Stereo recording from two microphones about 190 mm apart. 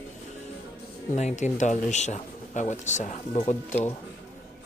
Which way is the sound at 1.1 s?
40° left (ahead or behind).